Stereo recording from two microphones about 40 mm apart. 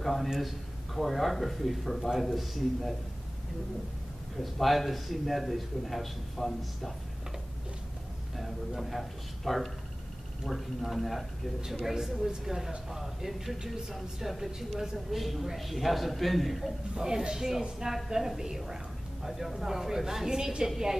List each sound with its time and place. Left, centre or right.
0.0 s a man's voice: centre
4.4 s a man's voice: centre
8.4 s a man's voice: centre
16.9 s a woman's voice: centre